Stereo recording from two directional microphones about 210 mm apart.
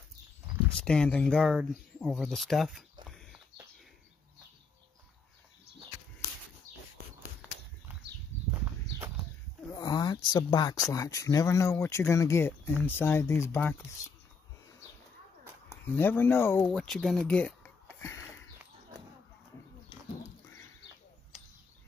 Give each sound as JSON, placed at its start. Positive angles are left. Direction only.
{"t": 0.8, "sound": "speech", "side_deg": 5}
{"t": 7.9, "sound": "horse", "side_deg": -10}
{"t": 8.3, "sound": "horse", "side_deg": -35}
{"t": 9.7, "sound": "a sound", "side_deg": 20}
{"t": 10.9, "sound": "speech", "side_deg": 15}
{"t": 15.8, "sound": "speech", "side_deg": 10}